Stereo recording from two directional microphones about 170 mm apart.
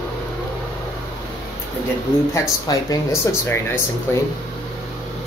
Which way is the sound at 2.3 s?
20° left (ahead or behind).